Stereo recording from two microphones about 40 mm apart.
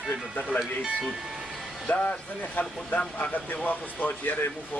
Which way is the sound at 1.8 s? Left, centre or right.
Left.